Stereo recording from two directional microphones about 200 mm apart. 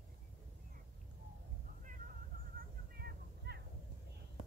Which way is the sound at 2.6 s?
50° right (ahead or behind).